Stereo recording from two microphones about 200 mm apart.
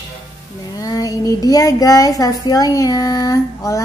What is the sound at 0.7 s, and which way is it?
Speech, 15° left (ahead or behind).